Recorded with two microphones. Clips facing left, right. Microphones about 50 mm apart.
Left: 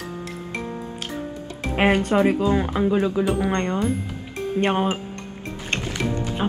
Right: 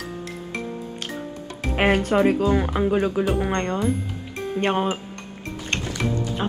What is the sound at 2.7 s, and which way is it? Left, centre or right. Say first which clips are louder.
Speech: even; centre.